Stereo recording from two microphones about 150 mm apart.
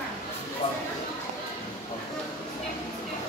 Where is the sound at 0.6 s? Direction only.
40° left (ahead or behind).